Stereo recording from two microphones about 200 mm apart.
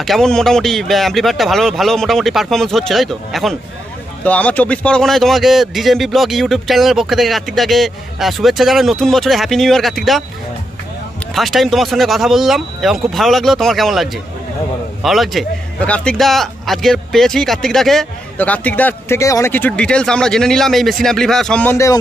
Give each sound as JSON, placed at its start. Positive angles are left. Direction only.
{"t": 0.0, "sound": "a man's voice", "side_deg": 0}
{"t": 11.3, "sound": "a man's voice", "side_deg": 0}
{"t": 15.0, "sound": "a man's voice", "side_deg": 0}